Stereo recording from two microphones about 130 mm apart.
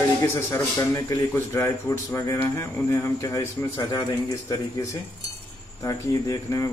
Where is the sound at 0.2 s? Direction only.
15° left (ahead or behind).